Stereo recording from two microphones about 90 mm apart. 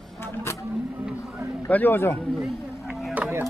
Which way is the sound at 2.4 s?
Centre (ahead or behind).